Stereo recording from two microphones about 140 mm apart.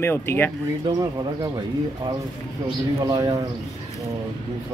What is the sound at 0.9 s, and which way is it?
Speech, 25° right (ahead or behind).